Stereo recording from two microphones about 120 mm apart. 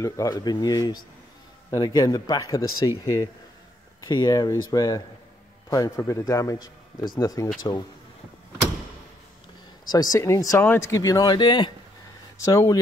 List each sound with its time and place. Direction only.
0.0 s speech: 30° left (ahead or behind)
4.1 s a man's voice: 35° left (ahead or behind)
9.8 s a man's voice: 30° left (ahead or behind)
12.4 s a man's voice: 25° left (ahead or behind)